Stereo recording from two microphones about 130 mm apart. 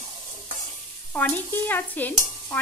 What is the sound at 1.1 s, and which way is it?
Stir, 15° left (ahead or behind).